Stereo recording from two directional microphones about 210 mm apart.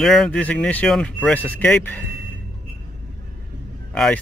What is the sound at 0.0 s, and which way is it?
Speech, centre (ahead or behind).